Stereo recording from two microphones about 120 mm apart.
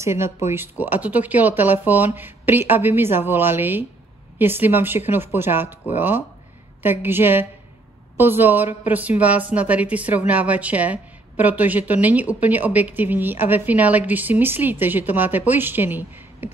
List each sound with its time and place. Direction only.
0.0 s a woman's voice: 25° right (ahead or behind)